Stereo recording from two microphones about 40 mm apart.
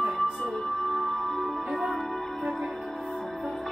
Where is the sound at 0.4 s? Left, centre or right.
Centre.